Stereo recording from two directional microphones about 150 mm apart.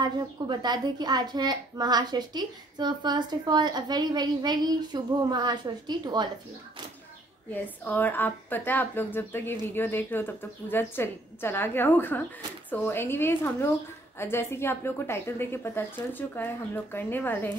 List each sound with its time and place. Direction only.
0.0 s a woman's voice: 30° right (ahead or behind)
7.5 s a woman's voice: 10° left (ahead or behind)